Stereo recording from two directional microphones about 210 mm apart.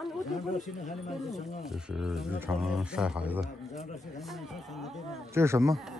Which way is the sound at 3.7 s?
35° left (ahead or behind).